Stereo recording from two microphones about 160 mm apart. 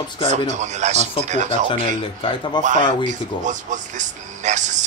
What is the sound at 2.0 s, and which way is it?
Speech, 35° left (ahead or behind).